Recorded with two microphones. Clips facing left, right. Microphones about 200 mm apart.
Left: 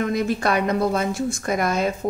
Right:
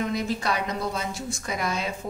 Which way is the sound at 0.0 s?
55° left (ahead or behind).